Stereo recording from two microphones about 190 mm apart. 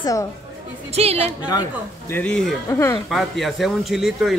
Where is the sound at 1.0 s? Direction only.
35° right (ahead or behind).